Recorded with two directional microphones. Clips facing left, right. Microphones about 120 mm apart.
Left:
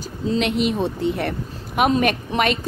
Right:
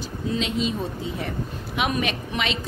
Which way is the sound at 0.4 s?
65° left (ahead or behind).